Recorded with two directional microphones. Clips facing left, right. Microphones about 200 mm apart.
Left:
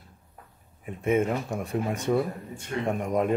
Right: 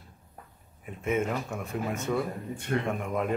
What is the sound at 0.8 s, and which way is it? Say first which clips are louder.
Speech: left 4 dB; 55° left (ahead or behind).